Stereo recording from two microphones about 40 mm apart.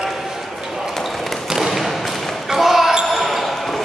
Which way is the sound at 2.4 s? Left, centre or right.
Centre.